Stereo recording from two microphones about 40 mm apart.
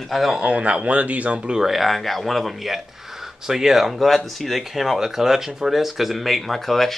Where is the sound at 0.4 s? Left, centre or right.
Right.